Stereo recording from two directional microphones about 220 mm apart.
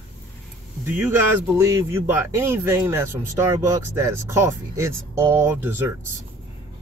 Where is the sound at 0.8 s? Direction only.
10° right (ahead or behind).